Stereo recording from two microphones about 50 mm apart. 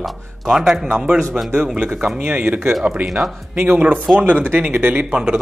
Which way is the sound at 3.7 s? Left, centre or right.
Right.